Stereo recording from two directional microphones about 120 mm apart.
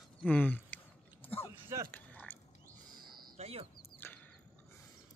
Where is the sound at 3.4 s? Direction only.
60° right (ahead or behind).